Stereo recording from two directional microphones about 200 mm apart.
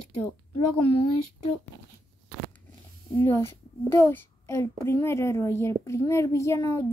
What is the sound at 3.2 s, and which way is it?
A child's voice, 15° left (ahead or behind).